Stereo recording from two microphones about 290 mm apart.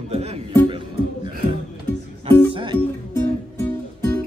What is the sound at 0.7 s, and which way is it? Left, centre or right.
Music, centre.